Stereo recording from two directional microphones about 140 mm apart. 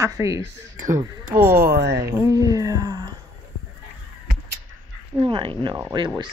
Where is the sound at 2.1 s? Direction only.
20° right (ahead or behind).